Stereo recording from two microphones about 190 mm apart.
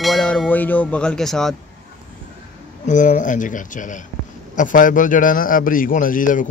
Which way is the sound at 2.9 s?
40° left (ahead or behind).